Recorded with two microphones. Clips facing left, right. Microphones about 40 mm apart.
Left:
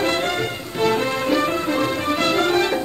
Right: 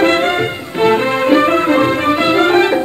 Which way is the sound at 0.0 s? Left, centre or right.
Right.